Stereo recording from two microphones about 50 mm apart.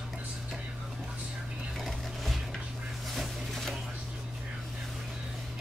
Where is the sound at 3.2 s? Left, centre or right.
Centre.